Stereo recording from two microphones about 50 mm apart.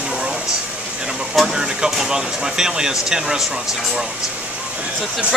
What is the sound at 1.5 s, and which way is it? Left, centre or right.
Speech, centre.